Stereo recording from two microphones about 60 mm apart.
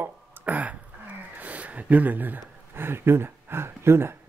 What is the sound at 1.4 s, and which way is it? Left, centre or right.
Speech, right.